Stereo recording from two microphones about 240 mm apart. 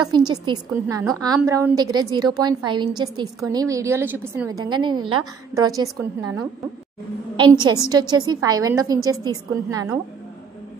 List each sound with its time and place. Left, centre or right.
0.1 s a woman's voice: centre
7.3 s a woman's voice: centre